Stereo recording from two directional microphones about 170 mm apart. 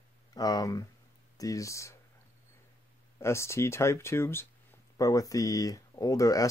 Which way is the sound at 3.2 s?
15° left (ahead or behind).